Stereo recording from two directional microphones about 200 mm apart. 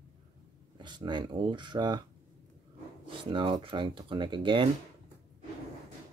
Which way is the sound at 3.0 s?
25° right (ahead or behind).